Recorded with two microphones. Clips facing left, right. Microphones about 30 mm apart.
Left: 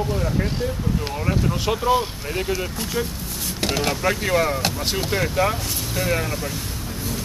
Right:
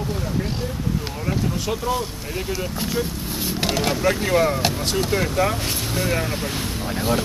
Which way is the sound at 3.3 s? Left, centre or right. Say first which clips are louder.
Right 2 dB; centre.